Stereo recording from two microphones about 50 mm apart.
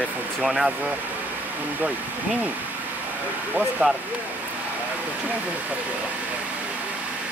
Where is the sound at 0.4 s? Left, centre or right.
Centre.